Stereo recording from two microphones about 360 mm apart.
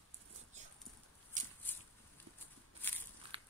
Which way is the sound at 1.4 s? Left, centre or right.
Right.